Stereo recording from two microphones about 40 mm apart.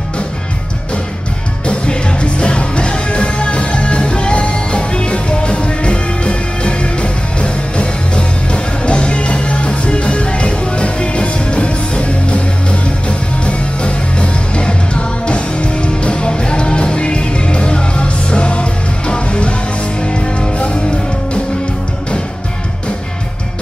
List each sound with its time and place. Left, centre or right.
1.7 s music: left